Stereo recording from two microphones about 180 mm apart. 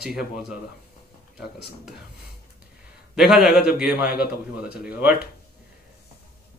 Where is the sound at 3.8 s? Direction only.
5° right (ahead or behind).